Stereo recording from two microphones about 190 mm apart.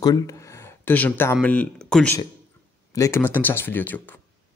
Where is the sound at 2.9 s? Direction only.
15° left (ahead or behind).